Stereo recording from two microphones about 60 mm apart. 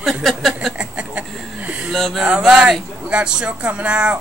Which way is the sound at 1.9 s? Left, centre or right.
Centre.